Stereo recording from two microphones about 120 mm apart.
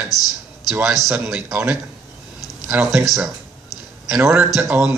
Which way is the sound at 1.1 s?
10° right (ahead or behind).